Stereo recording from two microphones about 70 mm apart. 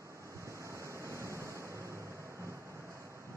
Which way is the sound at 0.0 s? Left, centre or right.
Right.